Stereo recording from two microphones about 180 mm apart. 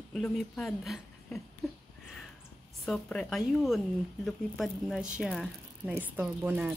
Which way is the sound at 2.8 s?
5° left (ahead or behind).